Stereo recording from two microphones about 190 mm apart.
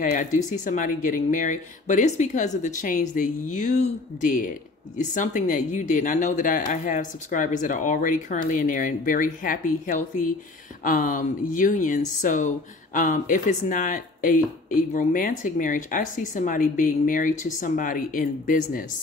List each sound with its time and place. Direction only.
0.0 s speech: 40° left (ahead or behind)